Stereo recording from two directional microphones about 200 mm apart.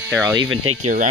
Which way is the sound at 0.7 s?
90° right.